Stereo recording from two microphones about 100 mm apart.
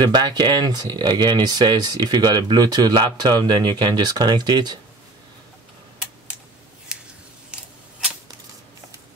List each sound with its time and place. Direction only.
0.0 s speech: 40° right (ahead or behind)
7.5 s scissors: 10° right (ahead or behind)